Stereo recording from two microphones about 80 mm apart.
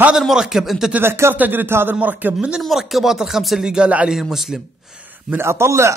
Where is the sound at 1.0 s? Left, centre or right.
Right.